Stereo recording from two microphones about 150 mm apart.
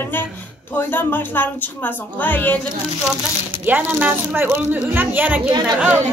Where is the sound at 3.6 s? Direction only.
10° right (ahead or behind).